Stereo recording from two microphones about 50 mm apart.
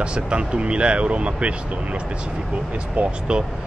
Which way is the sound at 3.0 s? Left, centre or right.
Right.